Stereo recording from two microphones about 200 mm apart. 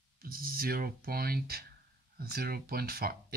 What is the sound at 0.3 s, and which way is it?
Speech, 45° right (ahead or behind).